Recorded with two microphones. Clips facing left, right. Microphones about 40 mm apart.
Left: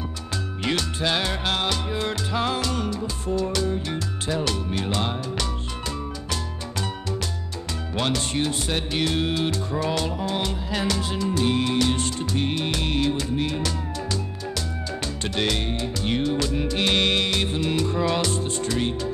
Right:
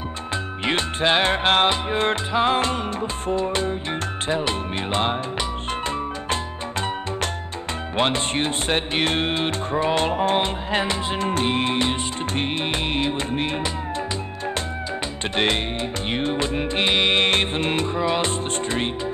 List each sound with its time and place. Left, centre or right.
0.7 s music: right
7.9 s music: right
11.1 s music: right
15.3 s music: right
17.2 s music: right
17.9 s music: centre
18.2 s music: right